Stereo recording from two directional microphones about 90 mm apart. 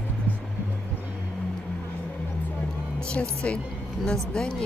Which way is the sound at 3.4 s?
10° left (ahead or behind).